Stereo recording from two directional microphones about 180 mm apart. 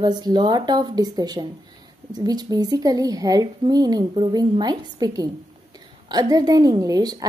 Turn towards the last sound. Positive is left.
turn(degrees=-20)  # may be behind; listen again after turning